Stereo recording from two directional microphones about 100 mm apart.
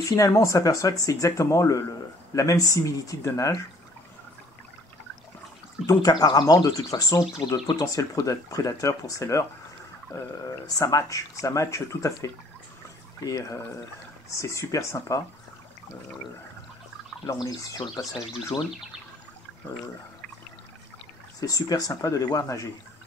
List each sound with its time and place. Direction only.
0.1 s speech: 30° left (ahead or behind)
5.9 s speech: 40° left (ahead or behind)
17.3 s speech: 40° left (ahead or behind)
18.5 s speech: 55° left (ahead or behind)
21.4 s speech: 35° left (ahead or behind)